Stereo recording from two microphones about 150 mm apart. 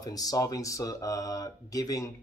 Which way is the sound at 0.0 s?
25° left (ahead or behind).